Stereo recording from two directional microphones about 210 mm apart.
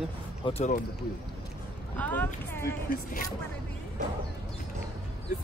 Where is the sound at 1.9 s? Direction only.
10° left (ahead or behind).